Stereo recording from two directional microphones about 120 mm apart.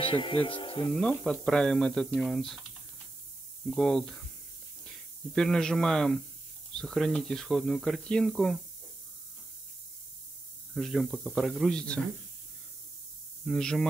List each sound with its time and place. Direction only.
0.0 s speech: 45° left (ahead or behind)
0.9 s speech: centre (ahead or behind)
3.7 s speech: centre (ahead or behind)
10.7 s speech: centre (ahead or behind)
13.5 s speech: 5° left (ahead or behind)